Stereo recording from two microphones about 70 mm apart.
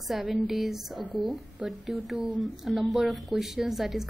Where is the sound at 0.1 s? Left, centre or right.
Centre.